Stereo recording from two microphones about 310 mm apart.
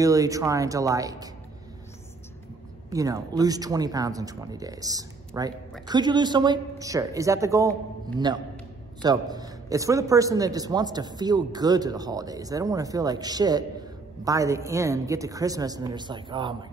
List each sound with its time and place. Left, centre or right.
0.0 s speech: centre
2.9 s speech: centre
9.0 s speech: centre